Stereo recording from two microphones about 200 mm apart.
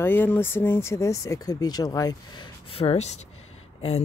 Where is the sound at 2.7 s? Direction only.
30° left (ahead or behind).